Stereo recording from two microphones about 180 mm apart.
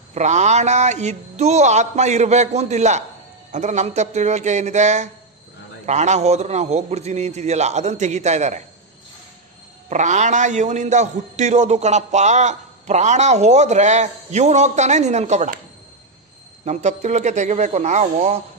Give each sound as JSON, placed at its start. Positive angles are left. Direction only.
{"t": 0.1, "sound": "a man's voice", "side_deg": -40}
{"t": 9.8, "sound": "a man's voice", "side_deg": -40}
{"t": 16.6, "sound": "a man's voice", "side_deg": -40}